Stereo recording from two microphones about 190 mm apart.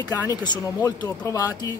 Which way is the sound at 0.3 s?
20° left (ahead or behind).